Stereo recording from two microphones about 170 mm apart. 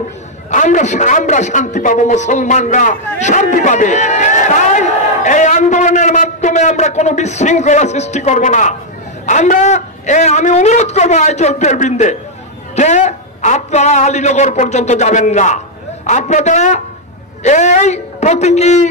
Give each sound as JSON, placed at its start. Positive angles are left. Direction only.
{"t": 0.5, "sound": "a woman's voice", "side_deg": 45}